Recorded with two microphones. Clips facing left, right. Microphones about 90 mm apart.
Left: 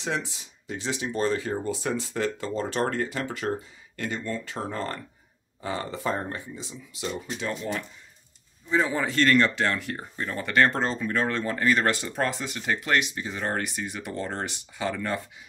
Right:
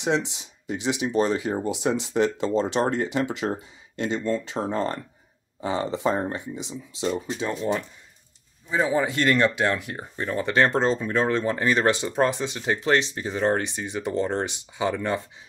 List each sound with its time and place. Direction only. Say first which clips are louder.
0.0 s speech: right 6 dB; 20° right (ahead or behind)
8.6 s speech: right 2 dB; 10° right (ahead or behind)